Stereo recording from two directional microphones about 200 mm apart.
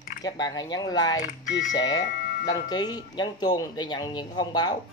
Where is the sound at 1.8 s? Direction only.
20° left (ahead or behind).